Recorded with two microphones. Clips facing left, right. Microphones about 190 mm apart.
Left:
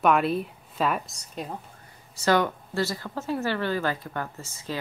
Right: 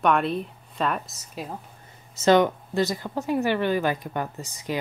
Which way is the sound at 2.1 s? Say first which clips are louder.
Right 5 dB; 20° right (ahead or behind).